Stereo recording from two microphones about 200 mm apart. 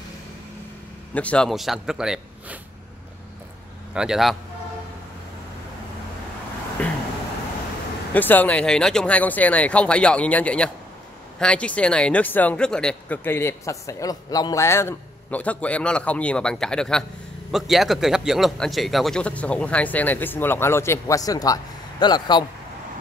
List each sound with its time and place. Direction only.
1.1 s a man's voice: 5° left (ahead or behind)
3.9 s a man's voice: 5° right (ahead or behind)
6.8 s a sound: 5° left (ahead or behind)
8.1 s a man's voice: 10° left (ahead or behind)